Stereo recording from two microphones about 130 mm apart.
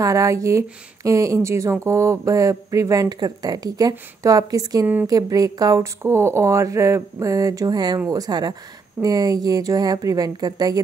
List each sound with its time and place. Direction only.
0.0 s speech: 25° right (ahead or behind)